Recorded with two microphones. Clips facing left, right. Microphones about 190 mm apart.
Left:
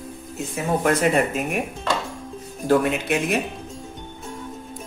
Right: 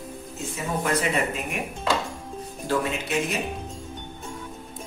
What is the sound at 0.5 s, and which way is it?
Speech, 50° left (ahead or behind).